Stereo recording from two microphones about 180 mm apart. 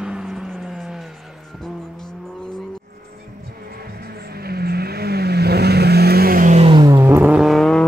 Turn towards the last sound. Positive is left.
turn(degrees=5)  # may be behind; listen again after turning